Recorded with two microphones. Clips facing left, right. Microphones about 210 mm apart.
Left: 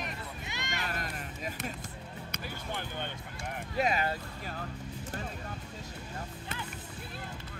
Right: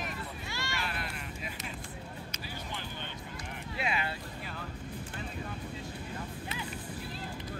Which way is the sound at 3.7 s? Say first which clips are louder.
Left 5 dB; 40° left (ahead or behind).